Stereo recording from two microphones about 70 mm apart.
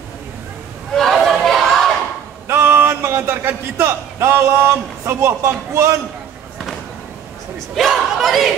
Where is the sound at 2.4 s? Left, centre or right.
Right.